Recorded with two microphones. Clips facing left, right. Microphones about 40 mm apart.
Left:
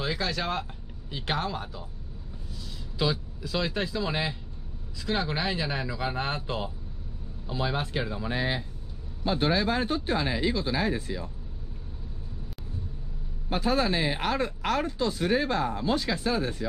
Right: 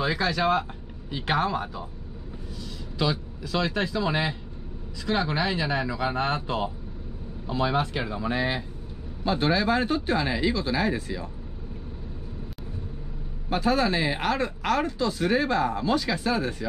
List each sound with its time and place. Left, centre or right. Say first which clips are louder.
0.0 s speech: right 5 dB; centre
3.0 s speech: right 1 dB; centre
9.3 s speech: right 2 dB; right
13.5 s speech: right 2 dB; right